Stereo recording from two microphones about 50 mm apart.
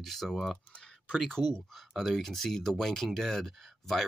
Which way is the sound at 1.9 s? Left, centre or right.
Centre.